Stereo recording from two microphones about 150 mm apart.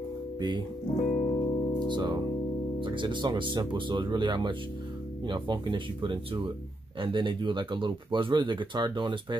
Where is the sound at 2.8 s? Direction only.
35° right (ahead or behind).